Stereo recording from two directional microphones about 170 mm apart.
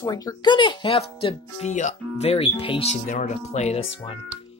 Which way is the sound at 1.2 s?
40° left (ahead or behind).